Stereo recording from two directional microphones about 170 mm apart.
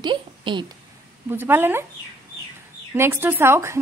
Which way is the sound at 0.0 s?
30° right (ahead or behind).